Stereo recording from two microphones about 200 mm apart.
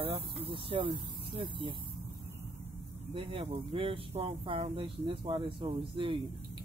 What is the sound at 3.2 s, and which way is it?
Speech, 25° right (ahead or behind).